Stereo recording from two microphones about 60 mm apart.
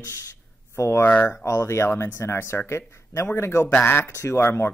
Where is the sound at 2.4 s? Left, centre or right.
Left.